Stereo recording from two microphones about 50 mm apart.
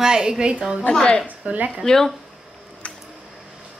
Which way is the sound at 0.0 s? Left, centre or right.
Centre.